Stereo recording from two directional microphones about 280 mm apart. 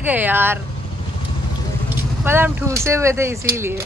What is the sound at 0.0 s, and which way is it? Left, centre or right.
Speech, centre.